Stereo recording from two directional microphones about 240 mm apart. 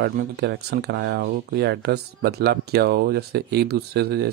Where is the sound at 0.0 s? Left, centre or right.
Right.